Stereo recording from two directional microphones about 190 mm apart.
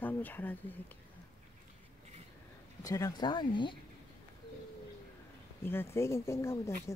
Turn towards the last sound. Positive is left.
turn(degrees=15)  # may be behind; listen again after turning